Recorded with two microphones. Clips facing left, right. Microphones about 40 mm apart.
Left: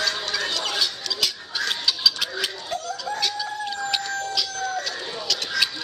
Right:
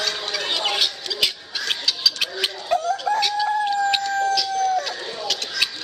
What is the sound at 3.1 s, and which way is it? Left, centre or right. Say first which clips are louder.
Chicken: right 6 dB; right.